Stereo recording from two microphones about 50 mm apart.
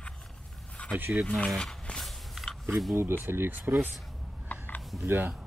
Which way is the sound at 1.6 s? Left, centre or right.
Centre.